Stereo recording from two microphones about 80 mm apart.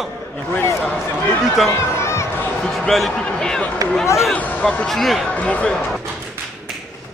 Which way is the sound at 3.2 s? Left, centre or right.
Centre.